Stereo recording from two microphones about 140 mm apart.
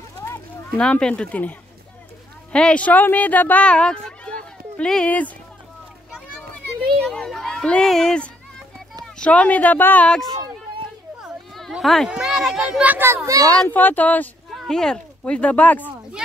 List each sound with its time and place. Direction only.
0.2 s a sound: 15° left (ahead or behind)
0.8 s speech: 5° left (ahead or behind)
6.5 s a sound: 5° left (ahead or behind)
9.0 s speech: 10° left (ahead or behind)
11.5 s a child's voice: centre (ahead or behind); by 13.5 s 20° right (ahead or behind)
13.5 s speech: 15° left (ahead or behind)